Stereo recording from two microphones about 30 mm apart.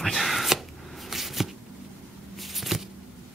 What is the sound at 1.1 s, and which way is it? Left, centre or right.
Shuffling cards, centre.